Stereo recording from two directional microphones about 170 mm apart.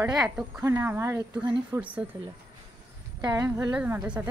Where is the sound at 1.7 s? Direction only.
10° right (ahead or behind).